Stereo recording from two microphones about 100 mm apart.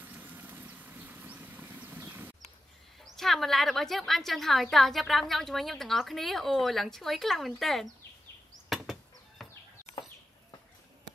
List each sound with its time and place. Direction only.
0.0 s vehicle: 20° right (ahead or behind)
3.2 s a woman's voice: centre (ahead or behind)
8.6 s chop: centre (ahead or behind)
9.4 s chicken: centre (ahead or behind)